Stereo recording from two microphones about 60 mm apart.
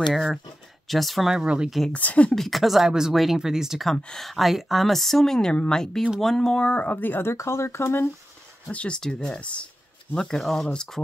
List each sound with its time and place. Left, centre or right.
0.1 s speech: centre
1.4 s speech: centre
1.9 s speech: left
2.3 s speech: centre
3.9 s speech: centre; by 7.3 s left
7.3 s speech: left
8.6 s speech: left
10.1 s speech: centre